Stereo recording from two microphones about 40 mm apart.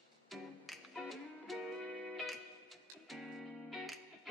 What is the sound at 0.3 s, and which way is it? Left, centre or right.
Music, centre.